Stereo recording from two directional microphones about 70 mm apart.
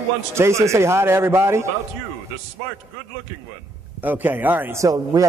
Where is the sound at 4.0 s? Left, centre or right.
Right.